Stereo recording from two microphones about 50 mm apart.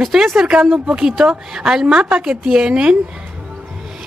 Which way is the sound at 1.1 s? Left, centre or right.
Centre.